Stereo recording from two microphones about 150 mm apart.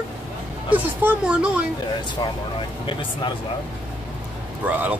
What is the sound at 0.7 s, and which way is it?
Speech, 10° right (ahead or behind).